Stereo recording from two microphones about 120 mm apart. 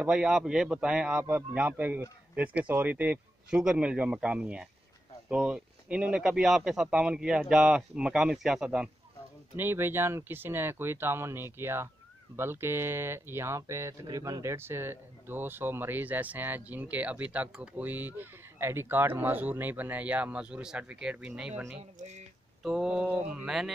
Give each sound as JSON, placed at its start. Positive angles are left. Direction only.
{"t": 0.0, "sound": "speech", "side_deg": -5}
{"t": 21.9, "sound": "speech", "side_deg": -70}
{"t": 22.6, "sound": "mantra", "side_deg": -5}